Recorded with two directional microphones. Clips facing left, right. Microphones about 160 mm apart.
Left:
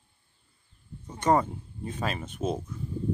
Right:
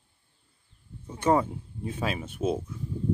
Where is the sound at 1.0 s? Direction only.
5° right (ahead or behind).